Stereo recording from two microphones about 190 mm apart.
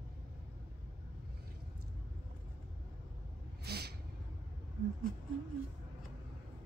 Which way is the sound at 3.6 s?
55° right (ahead or behind).